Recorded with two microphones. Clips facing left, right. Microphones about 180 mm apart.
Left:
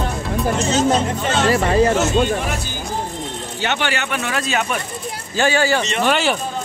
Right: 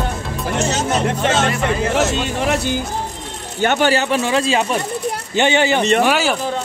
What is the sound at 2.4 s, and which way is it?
Speech, 65° right (ahead or behind).